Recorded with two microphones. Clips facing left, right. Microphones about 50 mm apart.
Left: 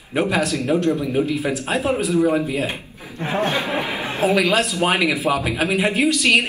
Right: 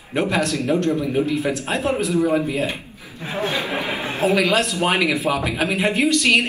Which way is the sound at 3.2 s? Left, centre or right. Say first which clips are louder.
Left 5 dB; left.